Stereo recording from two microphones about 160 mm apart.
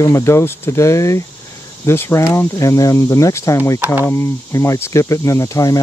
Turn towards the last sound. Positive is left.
turn(degrees=20)  # may be behind; listen again after turning